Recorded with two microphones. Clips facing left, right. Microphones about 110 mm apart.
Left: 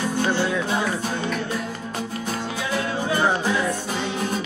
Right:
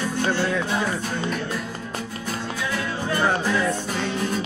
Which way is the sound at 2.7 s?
15° left (ahead or behind).